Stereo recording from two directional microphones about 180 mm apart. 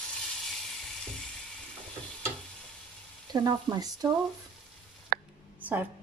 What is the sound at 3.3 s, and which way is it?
Frying, 25° right (ahead or behind).